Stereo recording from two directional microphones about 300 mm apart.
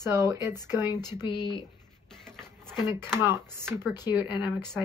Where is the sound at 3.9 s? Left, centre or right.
Centre.